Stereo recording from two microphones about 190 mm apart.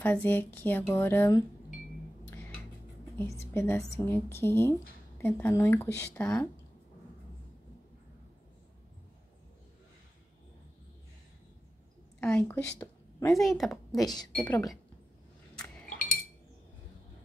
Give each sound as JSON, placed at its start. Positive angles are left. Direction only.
{"t": 0.0, "sound": "a woman's voice", "side_deg": 10}
{"t": 3.2, "sound": "a woman's voice", "side_deg": 10}
{"t": 12.2, "sound": "a woman's voice", "side_deg": 5}
{"t": 12.7, "sound": "a sound", "side_deg": 15}
{"t": 13.3, "sound": "a woman's voice", "side_deg": 0}